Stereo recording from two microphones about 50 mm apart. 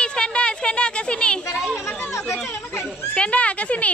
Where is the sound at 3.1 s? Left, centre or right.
Left.